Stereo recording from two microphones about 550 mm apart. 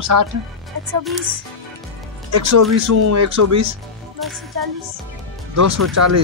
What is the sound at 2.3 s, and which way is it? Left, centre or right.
A man's voice, right.